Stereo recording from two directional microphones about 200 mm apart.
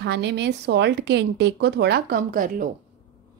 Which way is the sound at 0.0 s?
60° right (ahead or behind).